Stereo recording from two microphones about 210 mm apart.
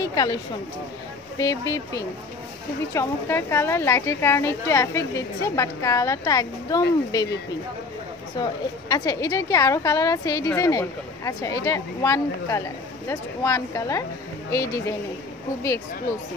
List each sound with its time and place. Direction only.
0.0 s a woman's voice: 15° left (ahead or behind)
1.4 s a woman's voice: 15° left (ahead or behind)
2.9 s a woman's voice: 10° left (ahead or behind)
8.4 s a woman's voice: 20° left (ahead or behind)